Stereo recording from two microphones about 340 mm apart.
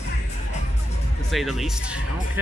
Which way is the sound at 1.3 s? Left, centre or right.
Centre.